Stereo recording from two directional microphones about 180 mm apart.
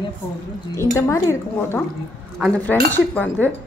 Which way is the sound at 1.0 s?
15° left (ahead or behind).